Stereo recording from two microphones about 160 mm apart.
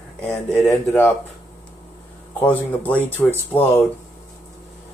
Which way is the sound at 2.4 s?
10° left (ahead or behind).